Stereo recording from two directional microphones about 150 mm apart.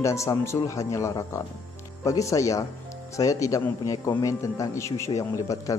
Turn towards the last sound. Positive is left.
turn(degrees=20)  # may be behind; listen again after turning